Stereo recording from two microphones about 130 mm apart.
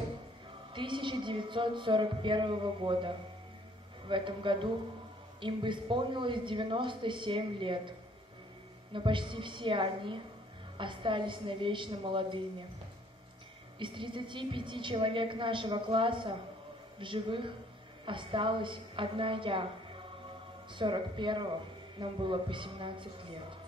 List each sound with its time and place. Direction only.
0.7 s a woman's voice: 40° right (ahead or behind)
8.9 s a woman's voice: 40° right (ahead or behind)
13.7 s a woman's voice: 40° right (ahead or behind)
20.7 s a woman's voice: 40° right (ahead or behind)